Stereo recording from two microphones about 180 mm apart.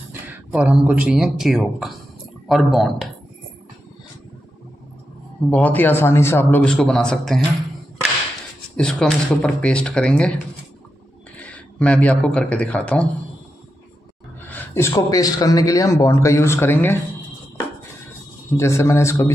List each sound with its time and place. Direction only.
0.1 s speech: 10° right (ahead or behind)
5.5 s a man's voice: 10° left (ahead or behind)
8.7 s speech: 5° left (ahead or behind)
11.3 s speech: 5° left (ahead or behind)
14.5 s a man's voice: 15° left (ahead or behind)
18.6 s a man's voice: 15° left (ahead or behind)